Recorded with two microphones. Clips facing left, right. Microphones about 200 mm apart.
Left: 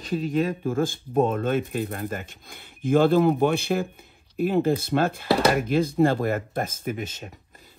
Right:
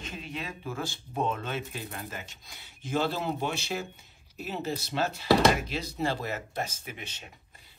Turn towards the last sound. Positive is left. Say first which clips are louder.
# left 9 dB
turn(degrees=45)  # may be behind; listen again after turning